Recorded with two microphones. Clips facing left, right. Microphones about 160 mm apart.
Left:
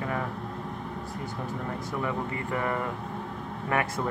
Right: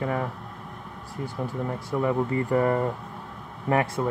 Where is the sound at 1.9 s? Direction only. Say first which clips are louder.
Right 8 dB; 35° right (ahead or behind).